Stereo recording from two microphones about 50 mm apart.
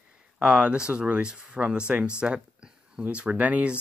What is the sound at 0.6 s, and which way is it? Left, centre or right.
Speech, right.